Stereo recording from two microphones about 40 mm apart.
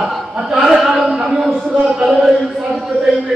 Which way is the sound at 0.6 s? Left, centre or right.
Centre.